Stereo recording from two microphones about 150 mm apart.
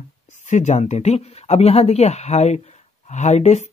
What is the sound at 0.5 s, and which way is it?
Speech, 50° left (ahead or behind).